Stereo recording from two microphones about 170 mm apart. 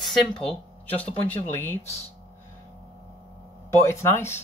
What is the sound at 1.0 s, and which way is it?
Speech, 35° left (ahead or behind).